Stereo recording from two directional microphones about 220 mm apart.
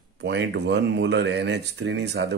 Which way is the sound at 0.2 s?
50° right (ahead or behind).